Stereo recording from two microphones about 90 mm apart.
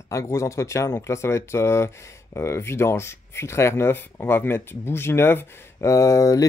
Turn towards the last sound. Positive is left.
turn(degrees=35)  # may be behind; listen again after turning